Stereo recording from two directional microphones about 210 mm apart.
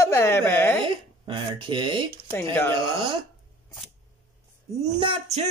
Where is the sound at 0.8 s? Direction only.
25° right (ahead or behind).